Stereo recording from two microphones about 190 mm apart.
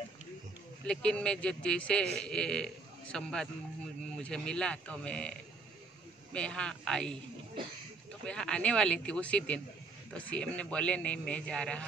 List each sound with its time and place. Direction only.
0.8 s a man's voice: 5° left (ahead or behind)
6.3 s speech: 5° left (ahead or behind)
8.3 s speech: 5° left (ahead or behind)